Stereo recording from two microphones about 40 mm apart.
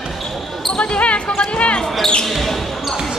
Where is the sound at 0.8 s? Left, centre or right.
Left.